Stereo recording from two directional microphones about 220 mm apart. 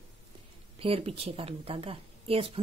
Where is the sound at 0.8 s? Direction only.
25° right (ahead or behind).